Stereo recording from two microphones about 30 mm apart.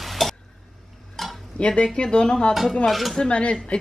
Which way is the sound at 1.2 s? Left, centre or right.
Centre.